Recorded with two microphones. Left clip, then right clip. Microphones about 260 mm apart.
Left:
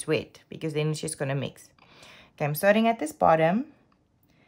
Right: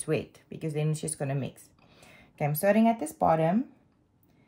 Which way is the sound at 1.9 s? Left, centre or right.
Centre.